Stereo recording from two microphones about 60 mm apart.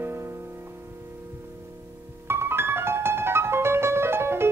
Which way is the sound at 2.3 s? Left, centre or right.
Right.